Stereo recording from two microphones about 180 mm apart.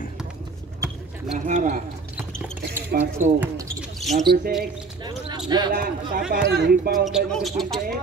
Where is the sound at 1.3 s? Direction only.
45° right (ahead or behind).